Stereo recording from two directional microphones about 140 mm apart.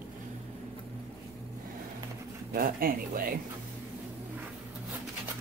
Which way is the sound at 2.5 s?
90° right.